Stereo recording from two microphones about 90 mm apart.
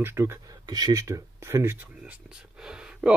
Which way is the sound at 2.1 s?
10° right (ahead or behind).